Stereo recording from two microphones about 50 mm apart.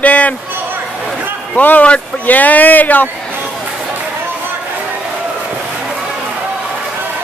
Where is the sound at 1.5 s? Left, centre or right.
Left.